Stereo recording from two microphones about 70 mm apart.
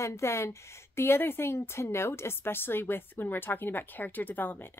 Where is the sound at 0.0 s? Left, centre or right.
Left.